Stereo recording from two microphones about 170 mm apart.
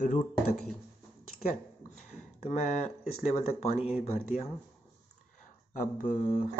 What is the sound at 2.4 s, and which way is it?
Speech, 40° left (ahead or behind).